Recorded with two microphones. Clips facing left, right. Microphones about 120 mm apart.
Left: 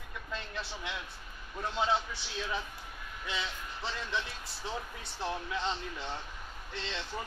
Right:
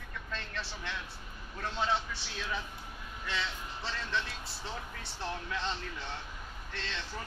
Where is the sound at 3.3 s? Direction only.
15° left (ahead or behind).